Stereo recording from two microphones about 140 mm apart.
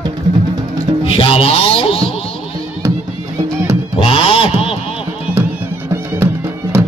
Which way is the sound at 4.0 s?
40° left (ahead or behind).